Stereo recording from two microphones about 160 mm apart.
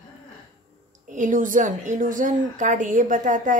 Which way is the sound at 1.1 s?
55° right (ahead or behind).